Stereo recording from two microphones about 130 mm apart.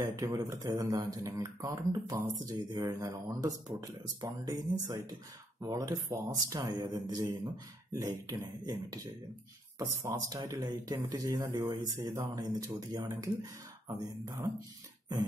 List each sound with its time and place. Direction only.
0.0 s speech: 25° right (ahead or behind)